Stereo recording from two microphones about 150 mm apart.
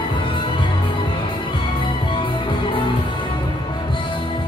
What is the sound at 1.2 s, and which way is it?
Music, 35° left (ahead or behind).